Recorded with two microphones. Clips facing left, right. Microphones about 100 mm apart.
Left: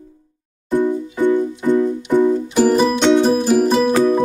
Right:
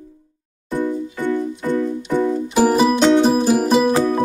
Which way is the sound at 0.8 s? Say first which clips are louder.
Left 4 dB; 15° left (ahead or behind).